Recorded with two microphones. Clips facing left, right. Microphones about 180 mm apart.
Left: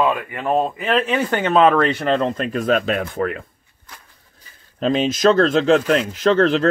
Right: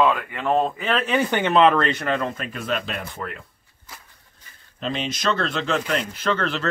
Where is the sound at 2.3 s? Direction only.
40° left (ahead or behind).